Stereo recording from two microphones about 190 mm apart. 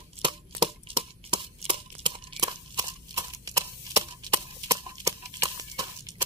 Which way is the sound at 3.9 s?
20° right (ahead or behind).